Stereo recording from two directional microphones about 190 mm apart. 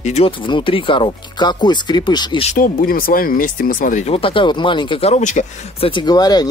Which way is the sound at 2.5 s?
50° left (ahead or behind).